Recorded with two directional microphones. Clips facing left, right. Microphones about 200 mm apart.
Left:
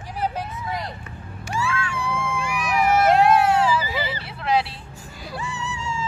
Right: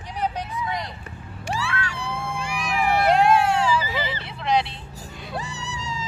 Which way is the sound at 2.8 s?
45° left (ahead or behind).